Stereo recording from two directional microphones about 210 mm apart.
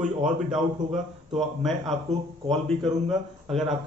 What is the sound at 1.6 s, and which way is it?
A man's voice, centre (ahead or behind).